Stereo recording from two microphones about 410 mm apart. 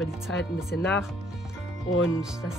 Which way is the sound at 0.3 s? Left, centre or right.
Left.